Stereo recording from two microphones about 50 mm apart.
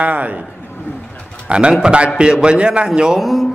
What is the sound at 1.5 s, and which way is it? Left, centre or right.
A man's voice, right.